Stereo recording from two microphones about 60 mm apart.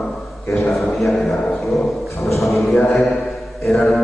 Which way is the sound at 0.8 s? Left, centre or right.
Centre.